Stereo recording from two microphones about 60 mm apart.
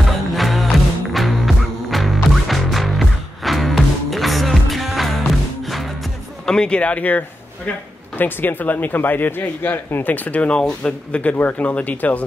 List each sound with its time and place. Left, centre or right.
0.4 s music: centre
6.4 s speech: centre